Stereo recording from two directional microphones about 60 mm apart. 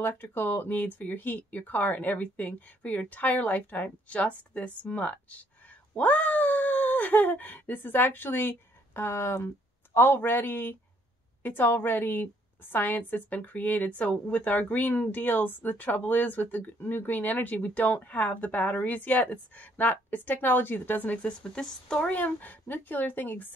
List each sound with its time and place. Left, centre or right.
0.0 s a woman's voice: left; by 22.1 s centre
22.1 s a woman's voice: left